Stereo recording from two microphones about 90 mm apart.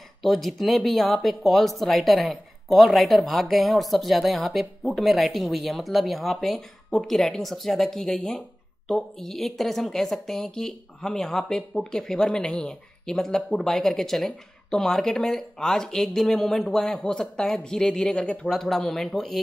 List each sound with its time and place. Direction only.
0.2 s a woman's voice: centre (ahead or behind)